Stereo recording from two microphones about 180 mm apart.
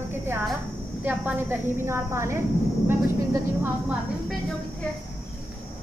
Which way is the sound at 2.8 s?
10° right (ahead or behind).